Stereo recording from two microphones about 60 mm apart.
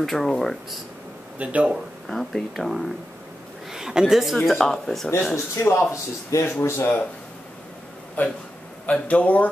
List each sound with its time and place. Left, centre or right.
0.0 s a woman's voice: centre
1.4 s speech: right
2.0 s a woman's voice: centre
3.7 s a woman's voice: centre
5.3 s speech: left
8.2 s a man's voice: left